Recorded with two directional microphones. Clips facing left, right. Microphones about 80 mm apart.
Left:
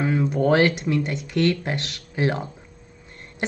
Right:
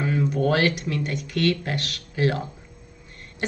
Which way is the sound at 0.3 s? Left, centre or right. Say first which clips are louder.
Left 4 dB; left.